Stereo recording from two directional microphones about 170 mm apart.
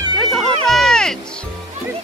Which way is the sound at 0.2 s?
Centre (ahead or behind).